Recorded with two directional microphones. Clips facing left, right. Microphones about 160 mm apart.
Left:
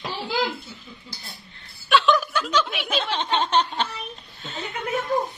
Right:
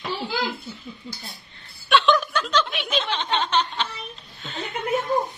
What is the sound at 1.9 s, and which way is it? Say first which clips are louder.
Chuckle: even; 5° left (ahead or behind).